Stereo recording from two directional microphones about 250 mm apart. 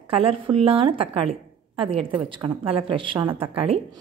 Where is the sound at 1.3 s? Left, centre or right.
Right.